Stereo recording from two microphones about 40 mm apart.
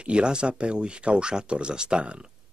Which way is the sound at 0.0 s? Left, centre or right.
Right.